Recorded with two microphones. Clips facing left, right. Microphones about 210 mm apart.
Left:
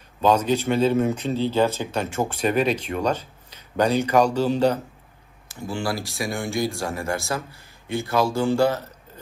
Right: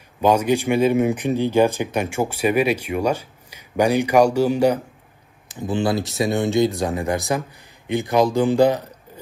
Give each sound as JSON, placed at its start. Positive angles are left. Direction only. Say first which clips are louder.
{"t": 0.2, "sound": "speech", "louder": "right 2 dB", "side_deg": -10}